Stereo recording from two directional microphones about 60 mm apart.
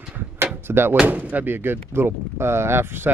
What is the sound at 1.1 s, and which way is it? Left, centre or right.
Speech, right.